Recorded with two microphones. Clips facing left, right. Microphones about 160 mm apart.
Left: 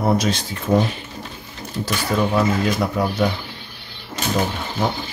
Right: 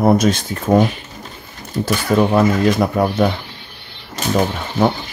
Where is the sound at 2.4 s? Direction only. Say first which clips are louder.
Right 5 dB; 50° right (ahead or behind).